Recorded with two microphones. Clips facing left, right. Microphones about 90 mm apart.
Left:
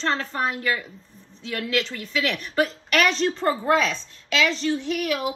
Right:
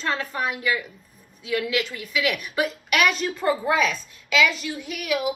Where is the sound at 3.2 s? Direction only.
35° left (ahead or behind).